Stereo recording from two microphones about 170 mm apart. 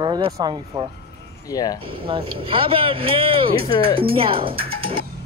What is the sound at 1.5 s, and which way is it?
Speech, 20° left (ahead or behind).